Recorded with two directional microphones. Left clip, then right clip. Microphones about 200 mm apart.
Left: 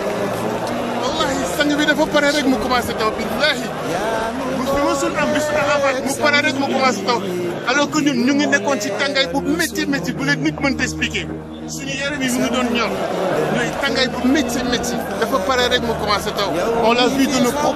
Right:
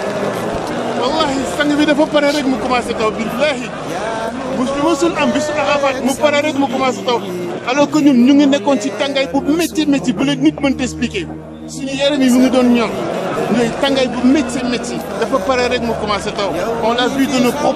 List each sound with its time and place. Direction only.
1.0 s a sound: 5° right (ahead or behind)
1.6 s speech: 5° right (ahead or behind)
4.8 s a man's voice: 15° right (ahead or behind)
12.0 s a man's voice: 20° right (ahead or behind)
14.3 s speech: 5° right (ahead or behind)